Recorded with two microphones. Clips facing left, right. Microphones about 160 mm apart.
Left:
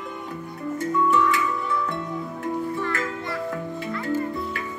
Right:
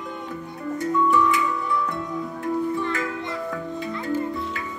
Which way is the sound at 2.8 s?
20° right (ahead or behind).